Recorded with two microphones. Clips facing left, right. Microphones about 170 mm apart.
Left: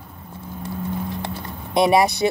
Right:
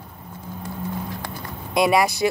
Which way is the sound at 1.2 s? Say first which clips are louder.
Left 2 dB; 25° left (ahead or behind).